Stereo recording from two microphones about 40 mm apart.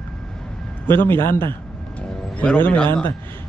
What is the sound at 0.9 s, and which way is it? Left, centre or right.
Speech, left.